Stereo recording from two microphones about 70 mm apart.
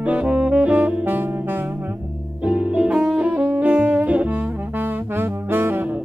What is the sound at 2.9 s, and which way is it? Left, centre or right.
Saxophone, centre.